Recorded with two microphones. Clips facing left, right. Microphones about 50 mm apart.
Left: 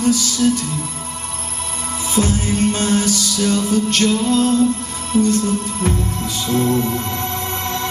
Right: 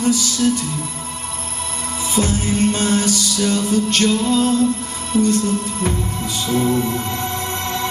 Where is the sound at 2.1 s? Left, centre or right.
Centre.